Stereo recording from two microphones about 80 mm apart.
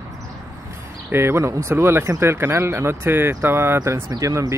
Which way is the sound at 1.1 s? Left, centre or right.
Right.